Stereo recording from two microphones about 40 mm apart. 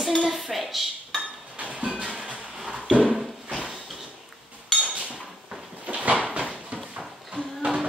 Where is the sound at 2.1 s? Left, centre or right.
Right.